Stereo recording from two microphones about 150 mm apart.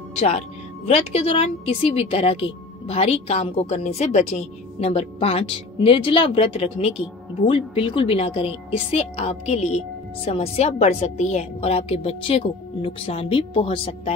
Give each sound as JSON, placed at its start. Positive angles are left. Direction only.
{"t": 0.2, "sound": "a woman's voice", "side_deg": 45}